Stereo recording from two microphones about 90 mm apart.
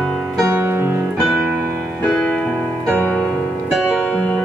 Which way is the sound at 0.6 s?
20° right (ahead or behind).